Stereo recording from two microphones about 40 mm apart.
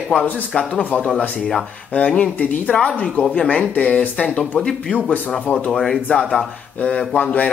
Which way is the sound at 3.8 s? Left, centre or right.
Left.